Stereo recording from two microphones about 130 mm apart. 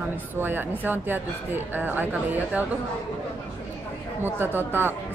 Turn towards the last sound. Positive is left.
turn(degrees=-15)  # may be behind; listen again after turning